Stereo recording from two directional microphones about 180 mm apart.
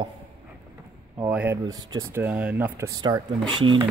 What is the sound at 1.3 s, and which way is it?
Speech, 10° right (ahead or behind).